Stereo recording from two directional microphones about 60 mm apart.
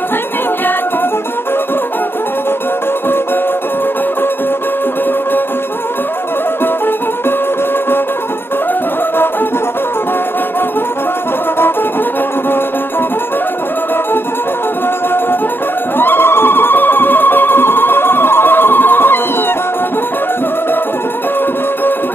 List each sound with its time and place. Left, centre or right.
16.0 s music: left